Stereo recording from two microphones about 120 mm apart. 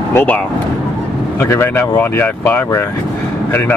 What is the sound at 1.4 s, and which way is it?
Speech, 20° left (ahead or behind).